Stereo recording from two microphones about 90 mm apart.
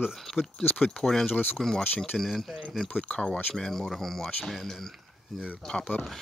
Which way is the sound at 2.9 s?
15° left (ahead or behind).